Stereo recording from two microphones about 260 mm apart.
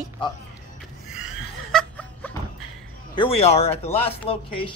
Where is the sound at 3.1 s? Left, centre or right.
Centre.